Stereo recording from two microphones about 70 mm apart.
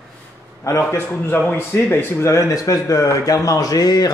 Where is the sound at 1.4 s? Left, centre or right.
Left.